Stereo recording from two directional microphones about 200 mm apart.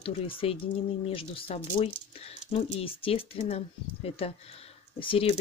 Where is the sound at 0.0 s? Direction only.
30° left (ahead or behind).